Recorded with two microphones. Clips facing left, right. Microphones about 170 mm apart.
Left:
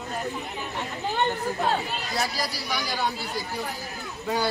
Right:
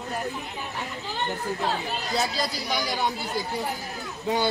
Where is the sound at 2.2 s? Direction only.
25° right (ahead or behind).